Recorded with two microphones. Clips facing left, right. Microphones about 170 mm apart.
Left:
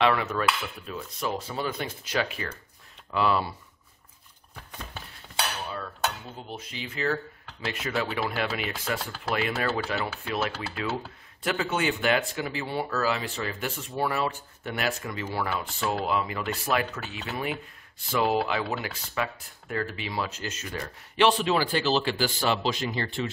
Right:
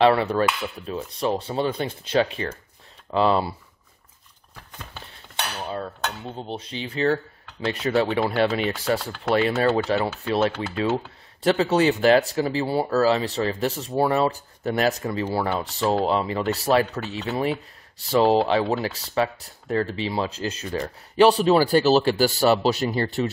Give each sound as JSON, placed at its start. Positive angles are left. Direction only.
{"t": 0.0, "sound": "speech", "side_deg": -30}
{"t": 5.7, "sound": "speech", "side_deg": -30}